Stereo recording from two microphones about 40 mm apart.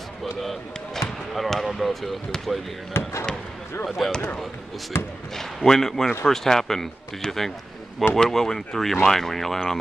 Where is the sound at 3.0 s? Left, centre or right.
Left.